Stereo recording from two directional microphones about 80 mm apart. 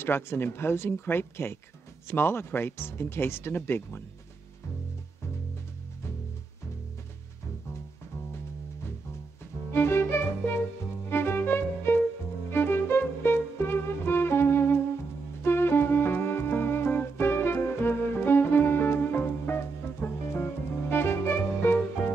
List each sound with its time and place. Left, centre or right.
0.0 s speech: left
9.7 s music: left